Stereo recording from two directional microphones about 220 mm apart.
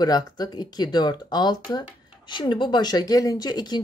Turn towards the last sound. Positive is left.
turn(degrees=20)  # may be behind; listen again after turning